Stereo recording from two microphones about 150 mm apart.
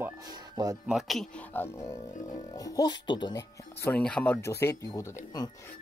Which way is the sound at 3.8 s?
10° left (ahead or behind).